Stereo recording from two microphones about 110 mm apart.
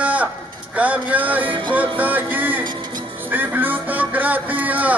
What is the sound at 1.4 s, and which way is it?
Music, 50° right (ahead or behind).